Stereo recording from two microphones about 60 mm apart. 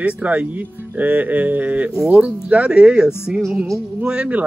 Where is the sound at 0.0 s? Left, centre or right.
Right.